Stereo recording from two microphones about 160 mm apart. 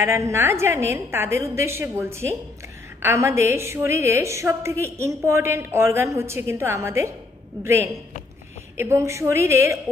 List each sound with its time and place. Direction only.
0.0 s a woman's voice: 15° right (ahead or behind)